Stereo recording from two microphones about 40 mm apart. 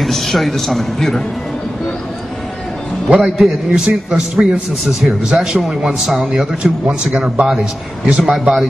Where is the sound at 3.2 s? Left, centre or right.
Centre.